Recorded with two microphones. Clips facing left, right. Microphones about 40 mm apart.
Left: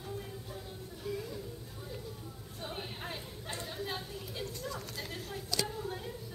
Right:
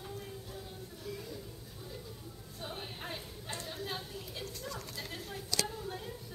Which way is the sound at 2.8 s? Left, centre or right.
Centre.